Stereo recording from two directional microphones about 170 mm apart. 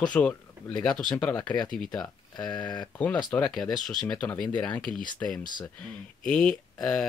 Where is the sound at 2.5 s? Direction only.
25° left (ahead or behind).